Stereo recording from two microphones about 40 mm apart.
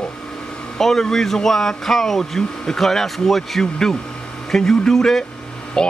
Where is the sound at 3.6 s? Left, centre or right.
Centre.